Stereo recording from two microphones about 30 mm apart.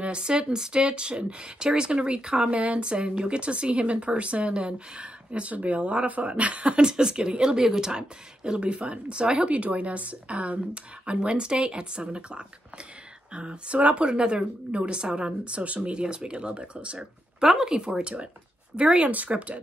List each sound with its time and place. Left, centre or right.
0.2 s speech: right
2.5 s speech: right
5.5 s speech: right
6.8 s speech: right
8.5 s speech: right
9.5 s speech: right
13.7 s speech: right
14.0 s speech: right
15.4 s speech: right
17.6 s speech: right
19.0 s speech: right